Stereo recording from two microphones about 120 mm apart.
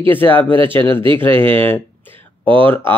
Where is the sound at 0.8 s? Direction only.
45° right (ahead or behind).